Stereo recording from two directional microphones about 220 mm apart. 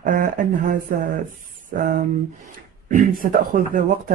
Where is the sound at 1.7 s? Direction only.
40° right (ahead or behind).